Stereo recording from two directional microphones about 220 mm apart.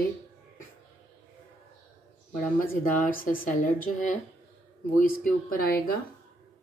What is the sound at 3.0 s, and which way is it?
Speech, 40° left (ahead or behind).